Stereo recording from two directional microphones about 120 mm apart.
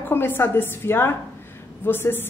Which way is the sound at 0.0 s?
20° left (ahead or behind).